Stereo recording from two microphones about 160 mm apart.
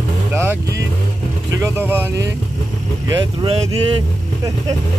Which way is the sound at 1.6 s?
15° right (ahead or behind).